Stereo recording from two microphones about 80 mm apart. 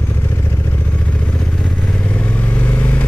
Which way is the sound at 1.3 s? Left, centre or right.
Centre.